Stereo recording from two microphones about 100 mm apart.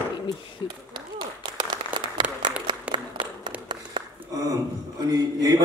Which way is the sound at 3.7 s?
40° right (ahead or behind).